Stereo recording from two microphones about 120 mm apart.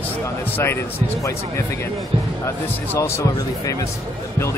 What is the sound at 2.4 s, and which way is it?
Speech, 25° left (ahead or behind).